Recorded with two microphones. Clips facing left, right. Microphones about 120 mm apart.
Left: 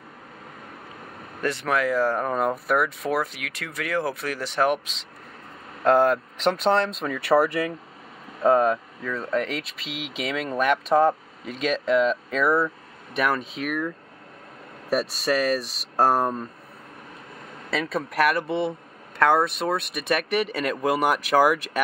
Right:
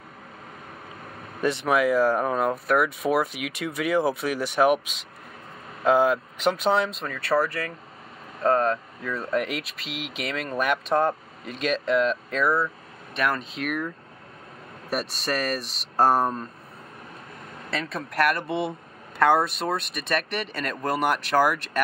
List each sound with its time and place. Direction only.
1.4 s speech: 20° right (ahead or behind); by 2.9 s centre (ahead or behind)
3.0 s speech: 15° right (ahead or behind)
7.1 s speech: 15° left (ahead or behind)
9.0 s speech: 5° right (ahead or behind)
16.0 s speech: 5° left (ahead or behind)
17.6 s speech: 5° left (ahead or behind)